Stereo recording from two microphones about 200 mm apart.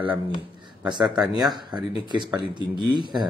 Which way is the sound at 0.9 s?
20° right (ahead or behind).